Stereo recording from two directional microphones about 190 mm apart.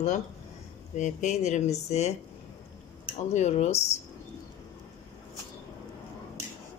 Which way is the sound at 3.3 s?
35° left (ahead or behind).